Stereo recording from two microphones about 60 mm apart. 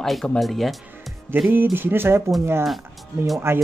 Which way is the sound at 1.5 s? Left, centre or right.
Right.